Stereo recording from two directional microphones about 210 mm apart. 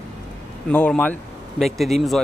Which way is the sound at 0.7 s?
5° left (ahead or behind).